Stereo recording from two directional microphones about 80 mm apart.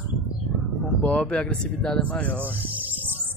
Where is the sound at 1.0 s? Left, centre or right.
Centre.